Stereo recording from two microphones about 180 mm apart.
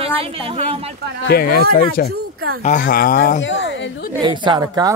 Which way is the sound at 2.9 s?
55° left (ahead or behind).